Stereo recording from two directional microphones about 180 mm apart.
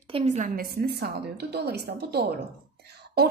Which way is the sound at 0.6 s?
60° right (ahead or behind).